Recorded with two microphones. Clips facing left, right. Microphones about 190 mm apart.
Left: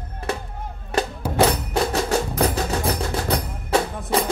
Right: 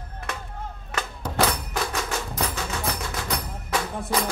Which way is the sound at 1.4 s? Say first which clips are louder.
Left 6 dB; 35° left (ahead or behind).